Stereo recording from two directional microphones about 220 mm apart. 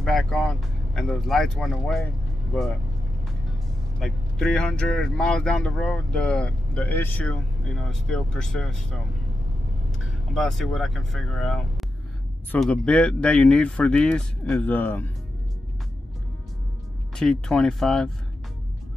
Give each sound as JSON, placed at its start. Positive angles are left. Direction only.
{"t": 0.0, "sound": "speech", "side_deg": 0}
{"t": 4.0, "sound": "speech", "side_deg": 0}
{"t": 17.1, "sound": "speech", "side_deg": 0}